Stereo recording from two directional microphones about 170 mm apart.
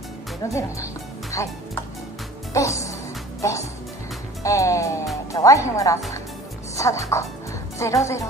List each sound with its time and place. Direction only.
0.5 s speech: 15° left (ahead or behind)
4.4 s music: 20° left (ahead or behind)
5.3 s speech: 20° left (ahead or behind)